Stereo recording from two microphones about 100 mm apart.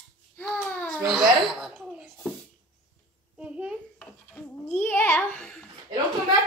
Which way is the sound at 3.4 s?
10° right (ahead or behind).